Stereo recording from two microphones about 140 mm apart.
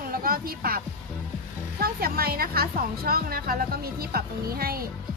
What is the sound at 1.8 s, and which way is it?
A woman's voice, 90° right.